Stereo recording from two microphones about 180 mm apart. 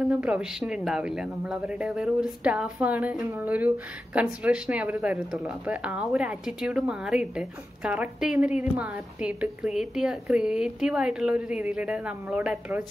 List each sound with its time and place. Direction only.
0.1 s speech: 5° right (ahead or behind)